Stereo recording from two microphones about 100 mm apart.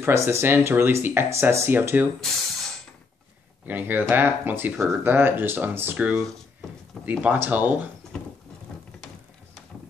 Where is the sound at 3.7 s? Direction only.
15° right (ahead or behind).